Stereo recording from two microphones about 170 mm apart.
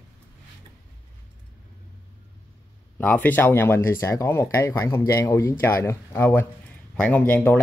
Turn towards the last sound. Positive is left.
turn(degrees=10)  # may be behind; listen again after turning